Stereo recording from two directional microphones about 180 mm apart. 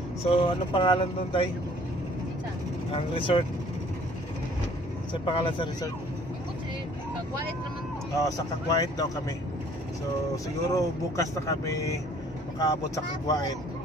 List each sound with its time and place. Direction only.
0.2 s speech: 30° left (ahead or behind)
2.9 s speech: 30° left (ahead or behind)
5.1 s speech: 30° left (ahead or behind)
8.2 s speech: 20° left (ahead or behind)
10.3 s speech: 20° left (ahead or behind)